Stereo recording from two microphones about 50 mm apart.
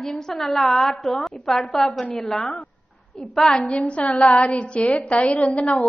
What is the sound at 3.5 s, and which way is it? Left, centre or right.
A woman's voice, left.